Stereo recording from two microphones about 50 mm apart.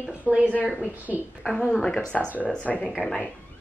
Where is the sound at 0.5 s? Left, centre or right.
Left.